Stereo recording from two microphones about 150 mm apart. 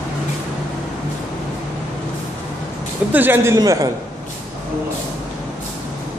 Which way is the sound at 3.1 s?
15° right (ahead or behind).